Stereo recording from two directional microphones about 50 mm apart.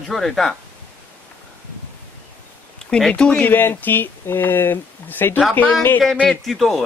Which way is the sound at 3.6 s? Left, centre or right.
Left.